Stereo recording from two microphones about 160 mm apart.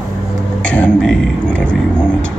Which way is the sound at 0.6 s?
10° left (ahead or behind).